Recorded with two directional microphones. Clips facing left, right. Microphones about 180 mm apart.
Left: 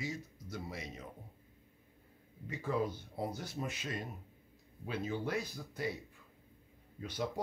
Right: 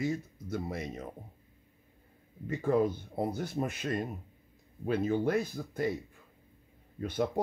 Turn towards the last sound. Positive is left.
turn(degrees=-55)  # may be behind; listen again after turning